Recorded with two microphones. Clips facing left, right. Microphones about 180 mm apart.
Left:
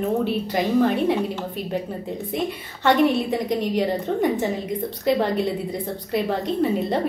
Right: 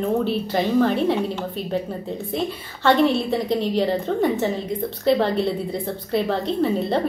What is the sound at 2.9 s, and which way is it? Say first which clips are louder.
A woman's voice: right 1 dB; 15° left (ahead or behind).